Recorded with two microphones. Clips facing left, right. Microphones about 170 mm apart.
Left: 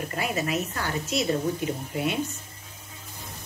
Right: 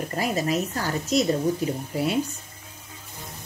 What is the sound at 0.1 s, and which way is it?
A woman's voice, 35° right (ahead or behind).